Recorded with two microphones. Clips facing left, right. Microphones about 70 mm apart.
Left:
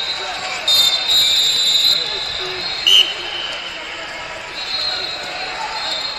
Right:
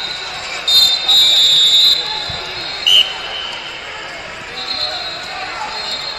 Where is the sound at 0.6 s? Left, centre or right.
Right.